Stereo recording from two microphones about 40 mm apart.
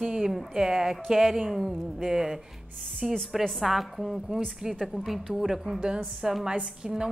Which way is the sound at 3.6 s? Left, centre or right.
Centre.